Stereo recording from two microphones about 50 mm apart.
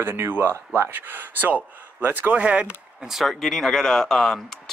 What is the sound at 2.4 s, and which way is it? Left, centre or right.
Speech, right.